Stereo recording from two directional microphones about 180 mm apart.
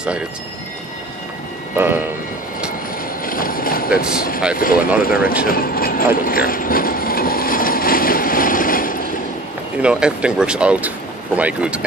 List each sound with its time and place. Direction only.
1.8 s speech: 10° right (ahead or behind)
3.3 s a sound: 50° left (ahead or behind)
4.6 s speech: 55° left (ahead or behind)
5.1 s speech: 5° right (ahead or behind)
5.5 s a sound: 55° left (ahead or behind)
9.8 s speech: 5° right (ahead or behind)